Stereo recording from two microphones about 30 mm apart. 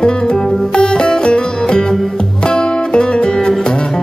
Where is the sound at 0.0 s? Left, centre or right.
Left.